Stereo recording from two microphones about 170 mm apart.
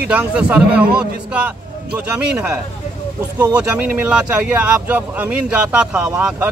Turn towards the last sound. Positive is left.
turn(degrees=-10)  # may be behind; listen again after turning